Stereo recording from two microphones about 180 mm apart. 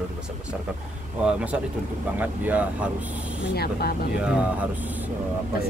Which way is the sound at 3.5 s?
60° left (ahead or behind).